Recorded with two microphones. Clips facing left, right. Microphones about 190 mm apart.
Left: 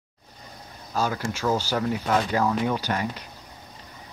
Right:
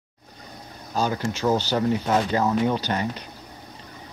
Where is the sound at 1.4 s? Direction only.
20° right (ahead or behind).